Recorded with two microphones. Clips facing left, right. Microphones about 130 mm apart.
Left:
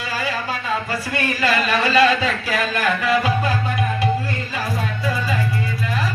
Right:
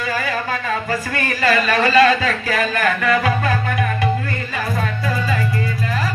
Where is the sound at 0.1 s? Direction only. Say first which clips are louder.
Right 1 dB; 50° right (ahead or behind).